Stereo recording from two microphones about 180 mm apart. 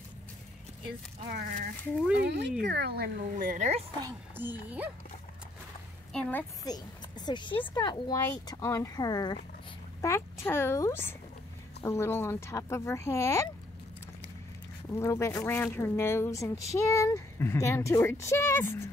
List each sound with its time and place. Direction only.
1.3 s speech: 55° right (ahead or behind)
2.1 s speech: 70° right (ahead or behind); by 3.8 s 40° right (ahead or behind)
4.4 s speech: 10° right (ahead or behind)
6.6 s speech: 20° left (ahead or behind)
14.9 s speech: 15° left (ahead or behind)